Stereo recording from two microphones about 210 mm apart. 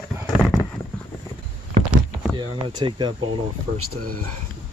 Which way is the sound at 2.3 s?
20° right (ahead or behind).